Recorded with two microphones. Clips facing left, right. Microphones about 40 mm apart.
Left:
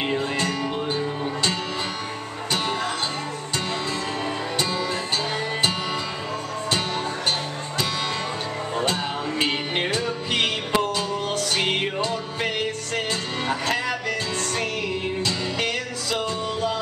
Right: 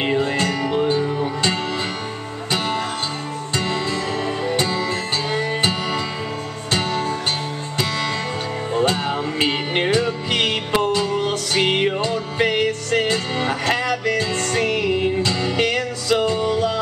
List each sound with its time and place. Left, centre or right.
0.0 s music: centre
1.0 s music: centre
2.5 s music: right
4.6 s music: centre
6.9 s music: centre
8.8 s music: centre
10.3 s music: right
11.5 s music: centre
14.0 s music: right